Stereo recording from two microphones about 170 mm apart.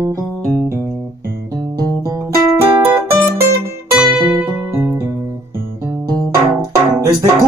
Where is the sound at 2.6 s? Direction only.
10° right (ahead or behind).